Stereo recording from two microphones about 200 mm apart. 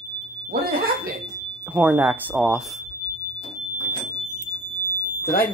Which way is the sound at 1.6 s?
10° right (ahead or behind).